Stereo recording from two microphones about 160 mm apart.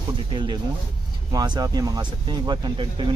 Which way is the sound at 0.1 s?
30° right (ahead or behind).